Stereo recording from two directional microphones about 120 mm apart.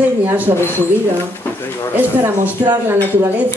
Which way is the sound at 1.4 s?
15° left (ahead or behind).